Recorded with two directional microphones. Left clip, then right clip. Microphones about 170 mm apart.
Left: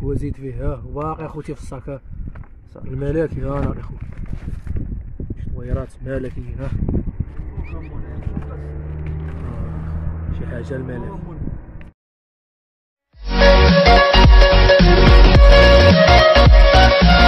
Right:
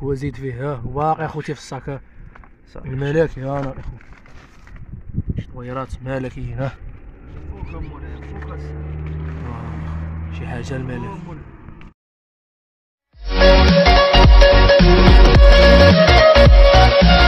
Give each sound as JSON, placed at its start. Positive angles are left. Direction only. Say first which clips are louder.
{"t": 0.0, "sound": "speech", "louder": "right 2 dB", "side_deg": -35}
{"t": 5.3, "sound": "speech", "louder": "right 2 dB", "side_deg": -25}
{"t": 10.5, "sound": "speech", "louder": "even", "side_deg": -40}
{"t": 13.4, "sound": "music", "louder": "even", "side_deg": 0}